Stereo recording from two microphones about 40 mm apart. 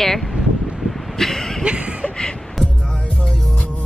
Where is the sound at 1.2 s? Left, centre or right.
Centre.